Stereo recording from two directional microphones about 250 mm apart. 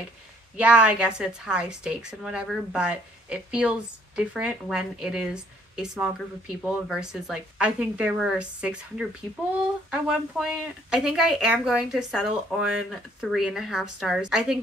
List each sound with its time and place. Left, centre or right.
0.6 s speech: centre